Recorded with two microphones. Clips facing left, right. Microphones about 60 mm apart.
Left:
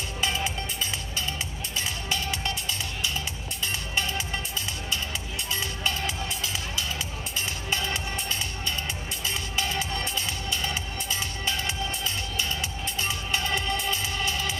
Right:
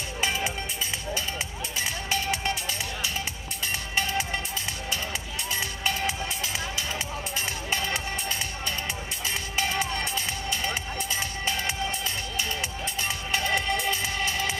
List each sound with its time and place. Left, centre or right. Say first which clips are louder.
0.2 s music: even; centre
2.0 s music: right 4 dB; right
3.9 s music: right 3 dB; right
5.5 s music: right 1 dB; right
7.7 s music: even; right
9.6 s music: right 2 dB; right
13.3 s music: right 3 dB; right